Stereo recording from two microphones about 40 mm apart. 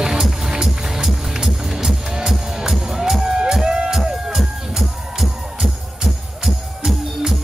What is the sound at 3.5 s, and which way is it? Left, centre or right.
Music, centre.